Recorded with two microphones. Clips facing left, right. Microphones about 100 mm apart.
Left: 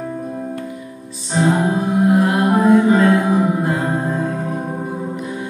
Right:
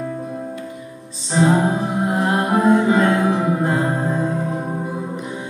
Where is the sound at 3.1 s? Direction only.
20° left (ahead or behind).